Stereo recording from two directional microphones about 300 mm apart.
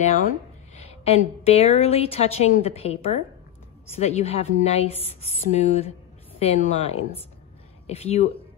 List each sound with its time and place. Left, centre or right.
0.7 s a woman's voice: left